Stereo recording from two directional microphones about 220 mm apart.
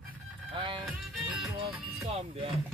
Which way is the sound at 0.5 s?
20° right (ahead or behind).